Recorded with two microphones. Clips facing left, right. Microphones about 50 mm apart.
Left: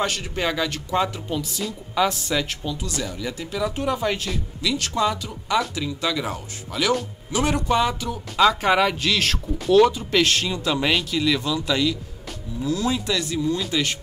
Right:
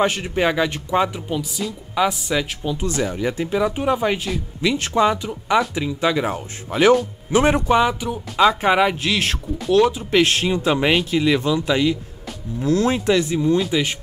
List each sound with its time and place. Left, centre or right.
0.0 s speech: right
2.8 s speech: right; by 4.4 s centre
4.6 s speech: right
7.6 s speech: centre
10.2 s speech: right
12.5 s speech: right
12.9 s speech: right
13.6 s speech: centre